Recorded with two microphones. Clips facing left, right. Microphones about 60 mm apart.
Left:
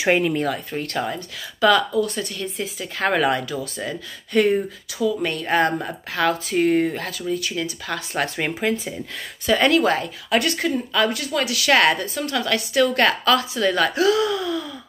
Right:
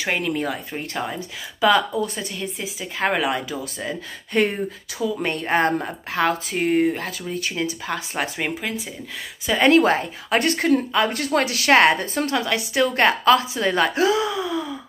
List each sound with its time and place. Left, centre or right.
0.0 s speech: centre
0.4 s speech: centre
1.8 s speech: right
2.4 s speech: centre
3.4 s speech: centre
4.3 s a woman's voice: right
8.5 s speech: centre
9.6 s a woman's voice: right
11.1 s a woman's voice: right; by 14.8 s centre